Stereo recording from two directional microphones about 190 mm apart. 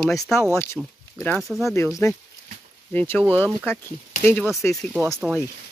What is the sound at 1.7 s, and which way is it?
Speech, 15° left (ahead or behind).